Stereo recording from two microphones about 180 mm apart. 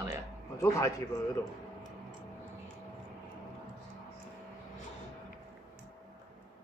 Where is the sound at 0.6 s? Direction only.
15° left (ahead or behind).